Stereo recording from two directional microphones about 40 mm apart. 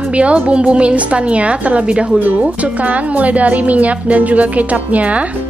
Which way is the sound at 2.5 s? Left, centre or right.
Right.